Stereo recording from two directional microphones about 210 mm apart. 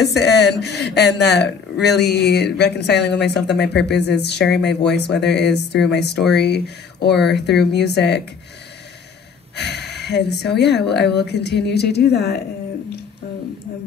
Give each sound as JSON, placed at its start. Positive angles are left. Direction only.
{"t": 0.1, "sound": "speech", "side_deg": 50}
{"t": 9.6, "sound": "speech", "side_deg": 55}